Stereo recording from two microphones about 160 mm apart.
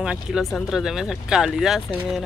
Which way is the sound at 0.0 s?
5° right (ahead or behind).